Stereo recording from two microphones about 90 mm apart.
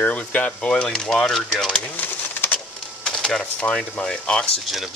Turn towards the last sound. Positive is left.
turn(degrees=10)  # may be behind; listen again after turning